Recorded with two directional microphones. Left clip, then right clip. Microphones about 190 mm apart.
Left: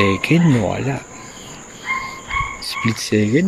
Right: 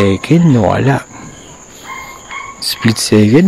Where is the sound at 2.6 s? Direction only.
35° right (ahead or behind).